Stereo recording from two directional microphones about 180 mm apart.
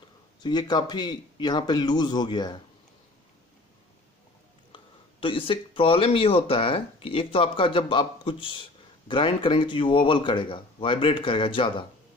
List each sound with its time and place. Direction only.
0.4 s speech: 25° left (ahead or behind)
4.7 s speech: 30° left (ahead or behind)